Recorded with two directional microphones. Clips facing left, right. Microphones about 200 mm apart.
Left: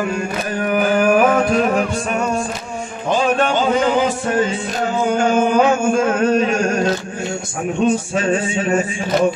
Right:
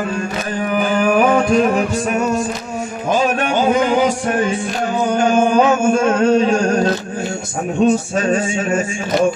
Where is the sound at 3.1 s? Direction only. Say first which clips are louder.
Even; 10° right (ahead or behind).